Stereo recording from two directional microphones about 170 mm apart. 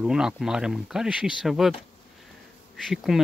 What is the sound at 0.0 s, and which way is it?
Speech, 5° right (ahead or behind).